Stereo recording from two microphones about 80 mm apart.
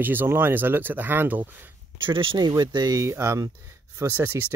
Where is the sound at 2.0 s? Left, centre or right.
Right.